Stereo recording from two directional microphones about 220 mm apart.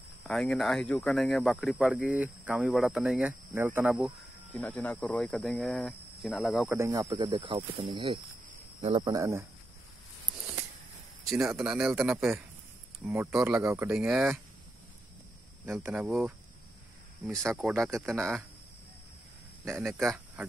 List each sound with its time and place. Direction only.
0.2 s speech: centre (ahead or behind)
4.6 s speech: 5° left (ahead or behind); by 9.5 s 10° right (ahead or behind)
11.3 s speech: 5° right (ahead or behind)
15.6 s speech: 5° right (ahead or behind)
17.4 s speech: 10° right (ahead or behind)
19.7 s speech: centre (ahead or behind)